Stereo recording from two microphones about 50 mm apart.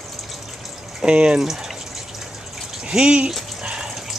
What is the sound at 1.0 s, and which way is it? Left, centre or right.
Speech, centre.